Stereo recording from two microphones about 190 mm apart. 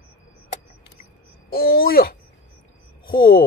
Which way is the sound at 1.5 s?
50° left (ahead or behind).